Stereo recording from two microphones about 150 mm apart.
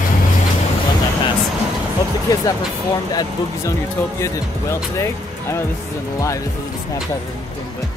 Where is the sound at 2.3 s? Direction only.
25° left (ahead or behind).